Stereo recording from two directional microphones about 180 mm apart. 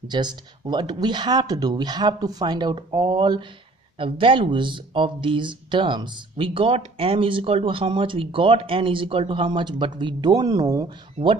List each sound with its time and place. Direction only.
0.1 s speech: 25° right (ahead or behind)